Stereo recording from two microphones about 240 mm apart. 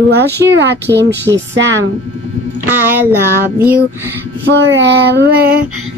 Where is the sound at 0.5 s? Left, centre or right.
Right.